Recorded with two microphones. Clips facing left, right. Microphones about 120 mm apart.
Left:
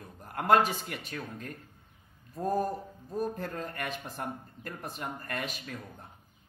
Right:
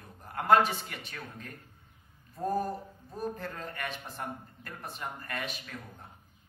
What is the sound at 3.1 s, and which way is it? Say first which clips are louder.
A man's voice: left 3 dB; 40° left (ahead or behind).